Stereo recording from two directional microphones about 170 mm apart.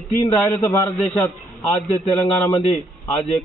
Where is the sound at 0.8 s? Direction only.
5° left (ahead or behind).